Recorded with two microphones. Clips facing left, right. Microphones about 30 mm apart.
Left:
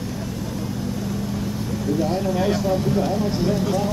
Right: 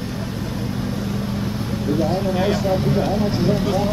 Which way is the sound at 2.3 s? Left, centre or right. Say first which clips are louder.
Right 1 dB; right.